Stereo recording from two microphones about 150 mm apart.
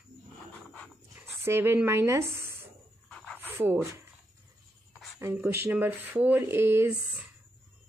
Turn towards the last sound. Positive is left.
turn(degrees=-15)  # may be behind; listen again after turning